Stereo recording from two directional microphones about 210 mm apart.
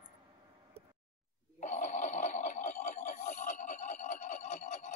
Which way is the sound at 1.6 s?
35° left (ahead or behind).